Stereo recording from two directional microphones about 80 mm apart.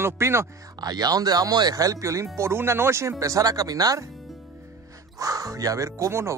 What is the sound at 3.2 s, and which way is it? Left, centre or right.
Speech, right.